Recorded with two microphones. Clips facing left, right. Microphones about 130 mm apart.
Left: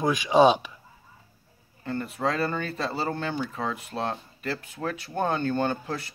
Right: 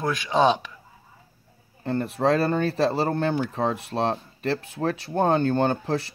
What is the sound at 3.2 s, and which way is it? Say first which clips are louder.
Speech: right 6 dB; 45° right (ahead or behind).